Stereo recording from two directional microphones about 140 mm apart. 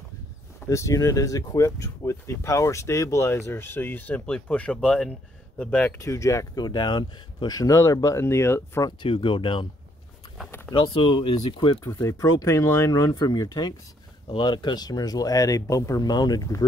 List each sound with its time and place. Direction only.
0.7 s speech: 20° left (ahead or behind)
5.9 s speech: 20° left (ahead or behind)
9.0 s speech: 35° left (ahead or behind)
10.7 s speech: 40° left (ahead or behind)